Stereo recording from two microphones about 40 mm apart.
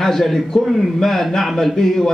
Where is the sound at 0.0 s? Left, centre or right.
Centre.